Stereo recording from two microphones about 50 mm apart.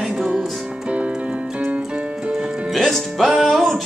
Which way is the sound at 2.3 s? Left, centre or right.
Centre.